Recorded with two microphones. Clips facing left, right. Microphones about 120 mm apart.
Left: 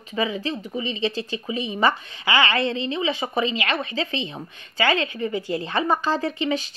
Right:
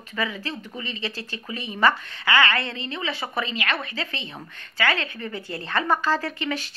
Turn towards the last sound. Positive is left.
turn(degrees=20)  # may be behind; listen again after turning